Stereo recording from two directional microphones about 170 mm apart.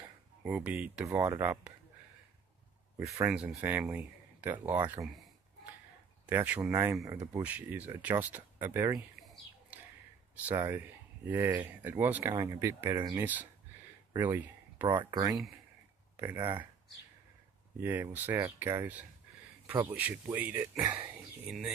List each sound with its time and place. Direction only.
0.4 s speech: 10° right (ahead or behind)
3.3 s speech: 10° right (ahead or behind)
5.0 s speech: centre (ahead or behind); by 7.4 s 20° right (ahead or behind)
7.4 s speech: 10° right (ahead or behind)
8.6 s speech: 20° right (ahead or behind)
9.2 s a sound: centre (ahead or behind)
10.3 s speech: 10° right (ahead or behind)
14.9 s speech: 25° right (ahead or behind)
16.3 s speech: 25° right (ahead or behind)
17.8 s speech: 10° right (ahead or behind)